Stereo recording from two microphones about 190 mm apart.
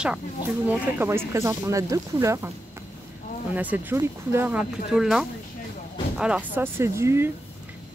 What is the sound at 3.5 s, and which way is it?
Speech, 10° right (ahead or behind).